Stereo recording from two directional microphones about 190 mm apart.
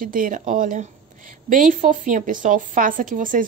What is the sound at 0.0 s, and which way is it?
A woman's voice, 45° right (ahead or behind).